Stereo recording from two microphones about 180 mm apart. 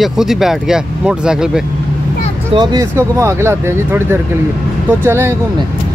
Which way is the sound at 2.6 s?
25° right (ahead or behind).